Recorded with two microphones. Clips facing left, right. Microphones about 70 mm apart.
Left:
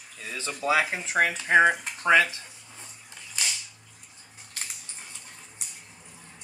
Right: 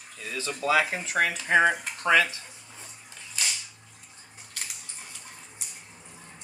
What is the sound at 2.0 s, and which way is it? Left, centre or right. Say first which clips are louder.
Speech: left 2 dB; left.